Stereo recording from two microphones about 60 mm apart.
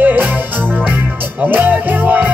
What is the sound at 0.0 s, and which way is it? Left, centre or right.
Music, right.